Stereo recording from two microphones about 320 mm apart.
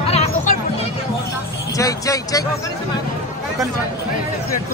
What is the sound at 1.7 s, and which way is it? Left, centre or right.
Speech, centre.